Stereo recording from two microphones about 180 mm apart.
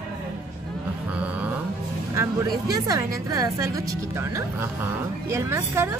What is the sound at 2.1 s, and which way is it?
A woman's voice, 20° right (ahead or behind).